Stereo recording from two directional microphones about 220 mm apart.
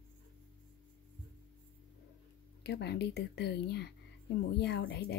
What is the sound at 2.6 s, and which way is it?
Speech, 50° left (ahead or behind).